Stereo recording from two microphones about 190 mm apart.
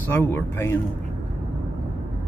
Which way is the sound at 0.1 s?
10° left (ahead or behind).